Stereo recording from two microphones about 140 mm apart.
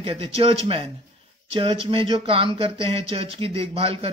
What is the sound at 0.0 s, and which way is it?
A man's voice, 45° right (ahead or behind).